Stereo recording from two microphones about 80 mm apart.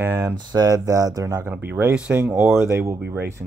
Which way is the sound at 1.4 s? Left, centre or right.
Right.